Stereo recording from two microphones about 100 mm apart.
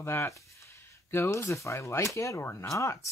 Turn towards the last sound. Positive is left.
turn(degrees=30)  # may be behind; listen again after turning